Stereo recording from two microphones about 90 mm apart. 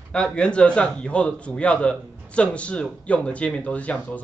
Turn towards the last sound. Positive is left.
turn(degrees=15)  # may be behind; listen again after turning